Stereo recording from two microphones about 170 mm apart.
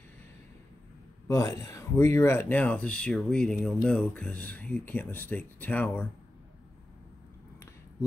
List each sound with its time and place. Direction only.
1.2 s speech: 20° left (ahead or behind)